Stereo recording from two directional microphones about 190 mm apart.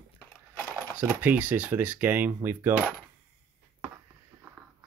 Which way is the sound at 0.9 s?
10° right (ahead or behind).